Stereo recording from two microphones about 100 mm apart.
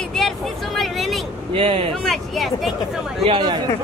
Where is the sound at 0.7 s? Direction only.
Centre (ahead or behind).